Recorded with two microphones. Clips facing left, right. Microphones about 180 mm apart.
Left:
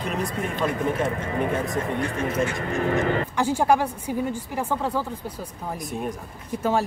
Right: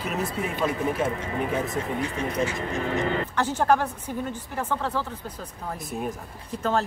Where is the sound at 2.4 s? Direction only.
50° left (ahead or behind).